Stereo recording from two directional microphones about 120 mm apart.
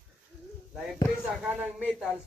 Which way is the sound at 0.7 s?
Centre (ahead or behind).